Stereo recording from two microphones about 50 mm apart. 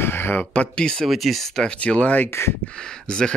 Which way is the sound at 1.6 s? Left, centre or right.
Left.